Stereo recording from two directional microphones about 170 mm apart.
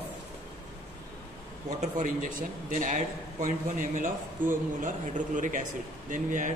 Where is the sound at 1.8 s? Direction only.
45° right (ahead or behind).